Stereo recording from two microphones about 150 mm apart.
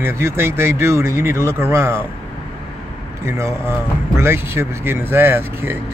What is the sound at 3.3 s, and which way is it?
Speech, 20° right (ahead or behind).